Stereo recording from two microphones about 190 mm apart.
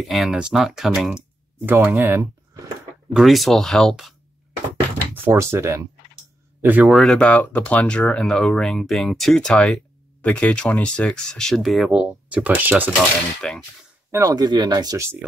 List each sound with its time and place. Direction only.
0.1 s speech: centre (ahead or behind)
3.1 s speech: centre (ahead or behind)
5.1 s speech: 10° right (ahead or behind)
13.4 s speech: 5° left (ahead or behind)
14.1 s speech: 20° right (ahead or behind)